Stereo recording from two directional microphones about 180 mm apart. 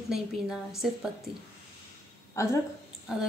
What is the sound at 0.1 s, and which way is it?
Speech, 5° right (ahead or behind).